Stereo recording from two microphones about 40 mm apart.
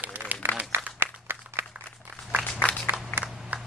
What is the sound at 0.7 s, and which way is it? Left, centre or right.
Applause, right.